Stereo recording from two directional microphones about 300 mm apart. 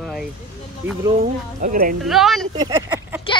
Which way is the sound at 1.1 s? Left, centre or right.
Right.